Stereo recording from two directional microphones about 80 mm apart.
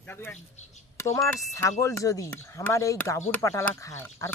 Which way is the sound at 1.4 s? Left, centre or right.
Left.